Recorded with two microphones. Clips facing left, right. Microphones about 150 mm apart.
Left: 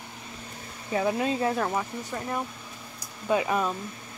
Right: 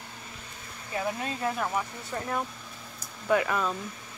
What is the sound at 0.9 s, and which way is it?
Speech, 25° left (ahead or behind).